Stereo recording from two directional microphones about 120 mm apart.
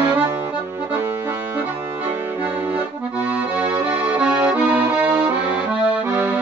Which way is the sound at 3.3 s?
15° right (ahead or behind).